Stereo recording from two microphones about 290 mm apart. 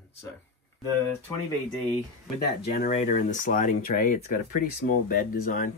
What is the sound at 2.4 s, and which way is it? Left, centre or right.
Speech, left.